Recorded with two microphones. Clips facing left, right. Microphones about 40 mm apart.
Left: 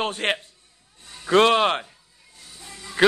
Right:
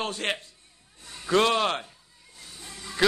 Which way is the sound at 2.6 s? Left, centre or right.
Centre.